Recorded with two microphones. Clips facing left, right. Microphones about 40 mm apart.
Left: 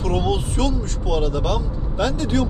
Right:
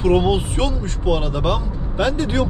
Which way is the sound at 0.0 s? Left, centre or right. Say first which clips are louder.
Right 5 dB; right.